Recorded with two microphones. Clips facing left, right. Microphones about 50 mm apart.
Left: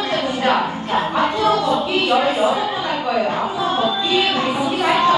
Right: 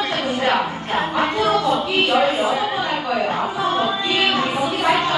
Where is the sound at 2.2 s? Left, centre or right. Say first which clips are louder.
Left 2 dB; left.